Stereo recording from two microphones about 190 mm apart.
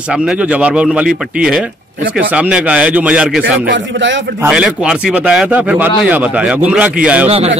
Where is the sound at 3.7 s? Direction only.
75° right (ahead or behind).